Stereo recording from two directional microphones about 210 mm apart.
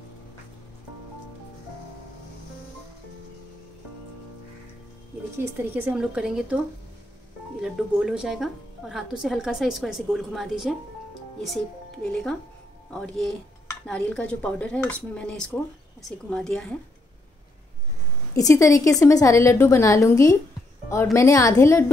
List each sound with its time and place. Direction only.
5.4 s speech: 10° right (ahead or behind)
7.6 s speech: 5° right (ahead or behind)
18.3 s a woman's voice: 15° left (ahead or behind)